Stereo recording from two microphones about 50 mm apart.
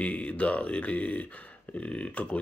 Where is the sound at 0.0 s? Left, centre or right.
Left.